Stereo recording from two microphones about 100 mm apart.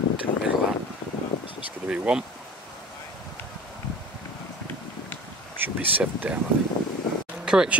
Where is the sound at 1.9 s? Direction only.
10° right (ahead or behind).